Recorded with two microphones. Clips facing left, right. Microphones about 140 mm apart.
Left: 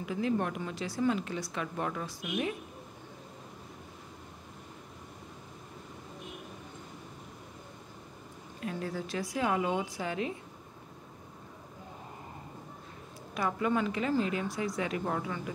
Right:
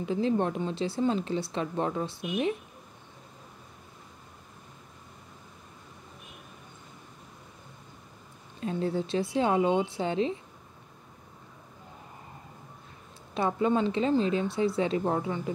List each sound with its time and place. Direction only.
0.0 s speech: 30° right (ahead or behind)
8.5 s speech: 25° right (ahead or behind)
13.3 s speech: 25° right (ahead or behind)